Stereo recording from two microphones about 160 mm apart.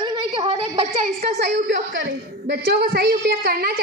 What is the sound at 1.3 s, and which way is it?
A woman's voice, 85° right.